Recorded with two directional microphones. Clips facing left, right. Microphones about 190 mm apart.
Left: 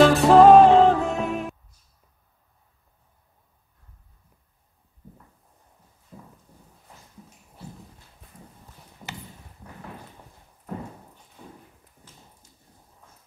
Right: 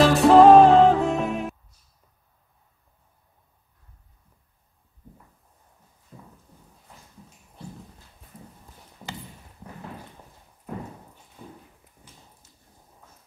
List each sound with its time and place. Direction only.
0.0 s music: centre (ahead or behind)